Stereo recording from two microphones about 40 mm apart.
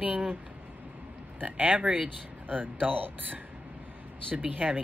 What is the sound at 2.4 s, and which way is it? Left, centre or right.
Speech, right.